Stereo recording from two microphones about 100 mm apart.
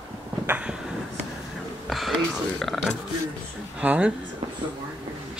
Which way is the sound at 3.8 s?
10° right (ahead or behind).